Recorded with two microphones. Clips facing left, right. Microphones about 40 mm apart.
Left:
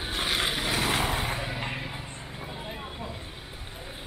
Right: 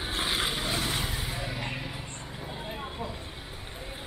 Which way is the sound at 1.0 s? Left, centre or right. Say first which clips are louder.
Left 5 dB; left.